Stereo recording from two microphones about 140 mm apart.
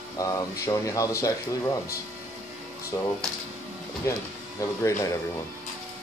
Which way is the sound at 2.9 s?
20° left (ahead or behind).